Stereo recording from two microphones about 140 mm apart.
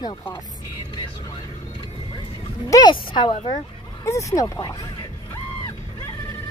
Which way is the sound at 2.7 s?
35° left (ahead or behind).